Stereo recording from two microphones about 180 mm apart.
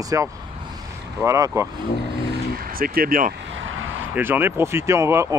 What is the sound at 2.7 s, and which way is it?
Speech, 55° right (ahead or behind).